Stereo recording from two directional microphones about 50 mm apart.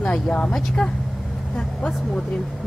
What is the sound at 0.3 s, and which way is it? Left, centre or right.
Speech, centre.